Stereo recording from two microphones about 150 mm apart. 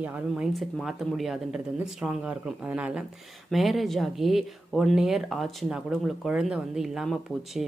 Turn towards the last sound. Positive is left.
turn(degrees=0)  # may be behind; listen again after turning